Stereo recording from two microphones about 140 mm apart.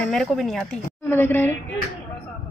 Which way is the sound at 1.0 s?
15° left (ahead or behind).